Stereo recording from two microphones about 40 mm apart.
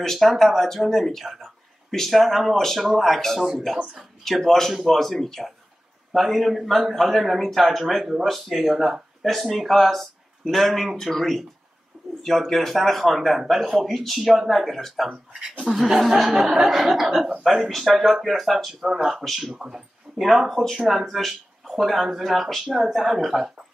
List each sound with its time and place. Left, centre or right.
0.0 s speech: centre
2.5 s speech: centre
3.7 s speech: centre
4.2 s speech: centre
15.6 s speech: centre
19.2 s speech: centre
19.5 s speech: centre
20.2 s speech: centre